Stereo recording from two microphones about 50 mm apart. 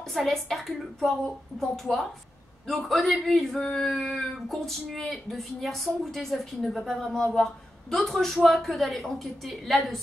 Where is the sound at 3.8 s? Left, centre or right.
Centre.